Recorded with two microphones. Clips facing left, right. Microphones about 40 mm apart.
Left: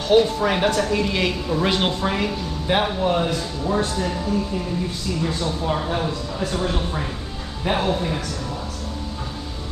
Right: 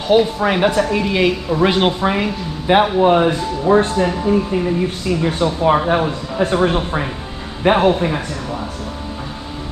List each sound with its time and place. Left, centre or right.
0.1 s speech: centre; by 8.2 s right